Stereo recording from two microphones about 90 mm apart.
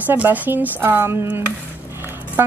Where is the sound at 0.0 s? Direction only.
20° right (ahead or behind).